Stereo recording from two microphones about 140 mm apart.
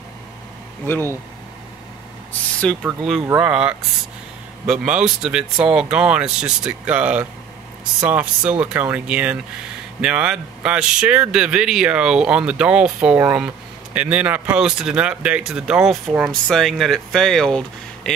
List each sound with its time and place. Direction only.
0.8 s speech: 15° left (ahead or behind)
2.6 s speech: 5° left (ahead or behind)
3.3 s speech: 5° right (ahead or behind)